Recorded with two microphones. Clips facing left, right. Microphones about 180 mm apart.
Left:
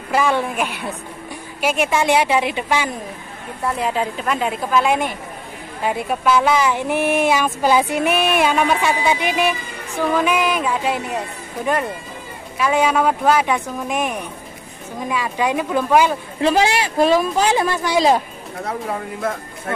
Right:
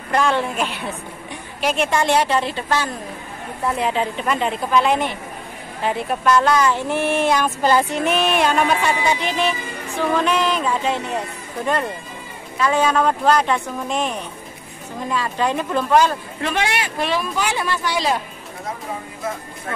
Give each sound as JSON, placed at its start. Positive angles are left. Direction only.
{"t": 0.1, "sound": "speech", "side_deg": 5}
{"t": 3.6, "sound": "a woman's voice", "side_deg": 0}
{"t": 12.5, "sound": "speech", "side_deg": 10}
{"t": 16.3, "sound": "speech", "side_deg": 30}